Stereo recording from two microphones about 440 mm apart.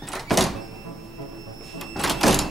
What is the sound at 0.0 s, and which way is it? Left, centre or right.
Music, centre.